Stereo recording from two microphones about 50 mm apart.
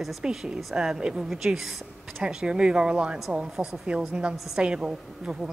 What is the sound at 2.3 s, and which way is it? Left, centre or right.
Speech, centre.